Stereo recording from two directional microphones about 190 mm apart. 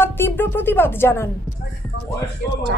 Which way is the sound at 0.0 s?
10° left (ahead or behind).